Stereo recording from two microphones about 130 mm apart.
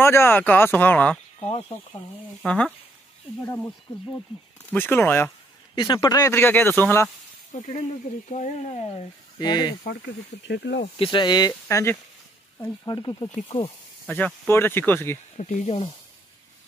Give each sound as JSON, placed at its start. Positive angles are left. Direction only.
{"t": 0.0, "sound": "speech", "side_deg": 20}
{"t": 2.4, "sound": "speech", "side_deg": 10}
{"t": 4.7, "sound": "speech", "side_deg": 15}
{"t": 5.8, "sound": "speech", "side_deg": 35}
{"t": 6.3, "sound": "speech", "side_deg": 15}
{"t": 7.5, "sound": "speech", "side_deg": 70}
{"t": 8.3, "sound": "speech", "side_deg": 60}
{"t": 9.4, "sound": "speech", "side_deg": 35}
{"t": 11.0, "sound": "speech", "side_deg": 35}
{"t": 11.7, "sound": "speech", "side_deg": 20}
{"t": 12.8, "sound": "speech", "side_deg": 35}
{"t": 13.3, "sound": "speech", "side_deg": 65}
{"t": 14.0, "sound": "speech", "side_deg": 10}
{"t": 15.3, "sound": "speech", "side_deg": 60}